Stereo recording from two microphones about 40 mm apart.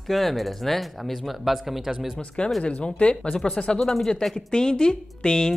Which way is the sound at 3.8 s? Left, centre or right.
Centre.